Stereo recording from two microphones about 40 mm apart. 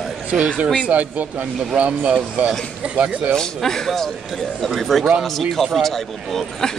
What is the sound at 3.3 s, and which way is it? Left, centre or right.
Speech, centre.